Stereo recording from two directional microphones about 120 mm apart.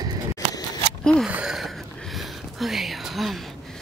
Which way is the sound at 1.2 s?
5° right (ahead or behind).